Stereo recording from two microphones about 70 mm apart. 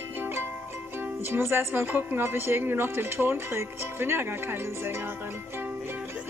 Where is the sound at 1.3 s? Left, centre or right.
Right.